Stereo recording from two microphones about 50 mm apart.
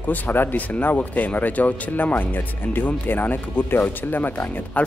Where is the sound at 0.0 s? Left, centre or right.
Left.